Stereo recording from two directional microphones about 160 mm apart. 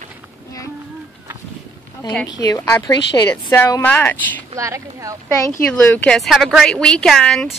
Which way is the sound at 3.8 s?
10° left (ahead or behind).